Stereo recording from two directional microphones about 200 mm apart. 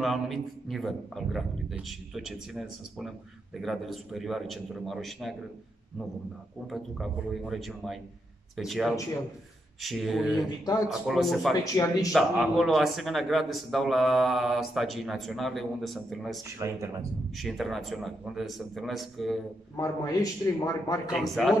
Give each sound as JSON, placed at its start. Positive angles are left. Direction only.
{"t": 0.0, "sound": "a man's voice", "side_deg": 0}
{"t": 6.7, "sound": "a man's voice", "side_deg": 0}
{"t": 11.7, "sound": "a man's voice", "side_deg": 15}
{"t": 12.1, "sound": "a man's voice", "side_deg": 0}
{"t": 16.4, "sound": "speech", "side_deg": -15}
{"t": 17.4, "sound": "a man's voice", "side_deg": 0}
{"t": 19.8, "sound": "a man's voice", "side_deg": 15}
{"t": 21.1, "sound": "a man's voice", "side_deg": 0}